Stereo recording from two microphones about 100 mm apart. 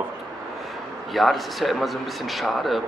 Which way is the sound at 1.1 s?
Centre (ahead or behind).